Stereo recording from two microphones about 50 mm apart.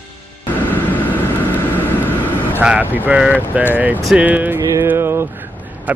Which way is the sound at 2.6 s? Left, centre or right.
Right.